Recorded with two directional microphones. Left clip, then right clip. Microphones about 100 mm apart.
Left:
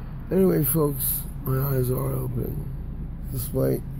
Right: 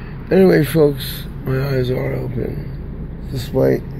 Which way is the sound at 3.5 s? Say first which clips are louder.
Right 10 dB; 30° left (ahead or behind).